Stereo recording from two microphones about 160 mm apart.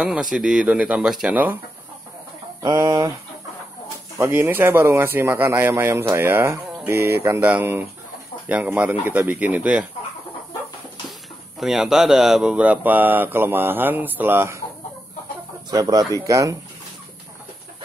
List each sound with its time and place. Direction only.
0.0 s speech: 5° right (ahead or behind)
2.6 s speech: 25° right (ahead or behind)
4.2 s speech: 15° right (ahead or behind)
11.6 s speech: 5° right (ahead or behind)
15.7 s speech: 25° right (ahead or behind)